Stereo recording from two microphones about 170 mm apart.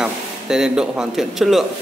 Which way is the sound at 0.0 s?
5° right (ahead or behind).